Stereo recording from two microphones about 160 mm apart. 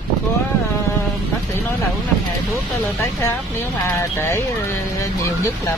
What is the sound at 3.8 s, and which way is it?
Speech, 15° left (ahead or behind).